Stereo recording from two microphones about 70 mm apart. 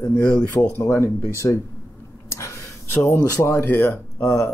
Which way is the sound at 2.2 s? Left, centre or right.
Left.